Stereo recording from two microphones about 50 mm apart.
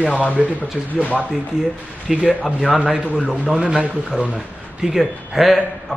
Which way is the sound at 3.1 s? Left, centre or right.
Right.